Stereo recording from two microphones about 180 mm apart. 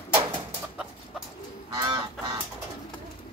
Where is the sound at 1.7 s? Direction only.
25° right (ahead or behind).